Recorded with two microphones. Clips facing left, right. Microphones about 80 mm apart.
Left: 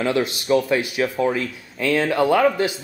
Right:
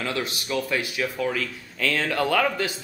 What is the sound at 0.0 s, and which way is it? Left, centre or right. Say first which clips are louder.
Speech: left 7 dB; left.